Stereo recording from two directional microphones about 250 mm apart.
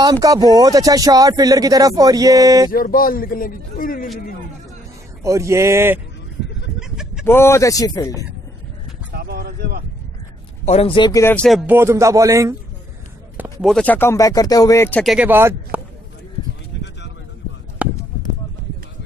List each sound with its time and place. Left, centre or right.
0.0 s speech: centre
2.7 s a man's voice: left
5.2 s speech: centre
6.8 s chicken: centre
7.2 s speech: centre
9.1 s a sound: right
10.6 s speech: left; by 12.5 s centre
13.4 s speech: centre
17.8 s a sound: centre